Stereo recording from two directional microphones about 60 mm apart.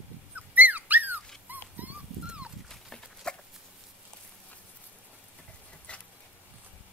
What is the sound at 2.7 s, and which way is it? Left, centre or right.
Dog, centre.